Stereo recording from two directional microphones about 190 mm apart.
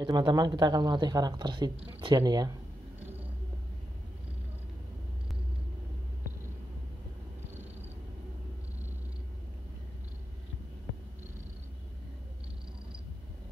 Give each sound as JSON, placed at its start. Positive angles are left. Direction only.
{"t": 0.0, "sound": "speech", "side_deg": -20}